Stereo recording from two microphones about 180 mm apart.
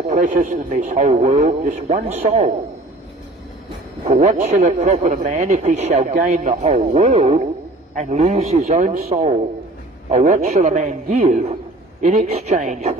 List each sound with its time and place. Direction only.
0.1 s a man's voice: 45° right (ahead or behind)
4.1 s a man's voice: 45° right (ahead or behind)
10.1 s a man's voice: 45° right (ahead or behind)